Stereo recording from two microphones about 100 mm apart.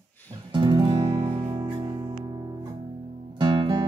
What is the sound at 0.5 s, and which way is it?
Music, 50° right (ahead or behind).